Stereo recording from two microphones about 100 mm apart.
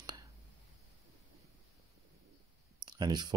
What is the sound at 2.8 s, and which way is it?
Speech, 45° right (ahead or behind).